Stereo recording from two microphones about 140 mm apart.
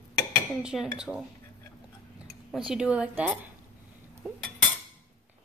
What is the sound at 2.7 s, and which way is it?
Speech, 5° right (ahead or behind).